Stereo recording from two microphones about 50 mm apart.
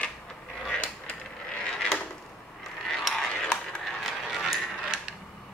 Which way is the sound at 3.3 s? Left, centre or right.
Centre.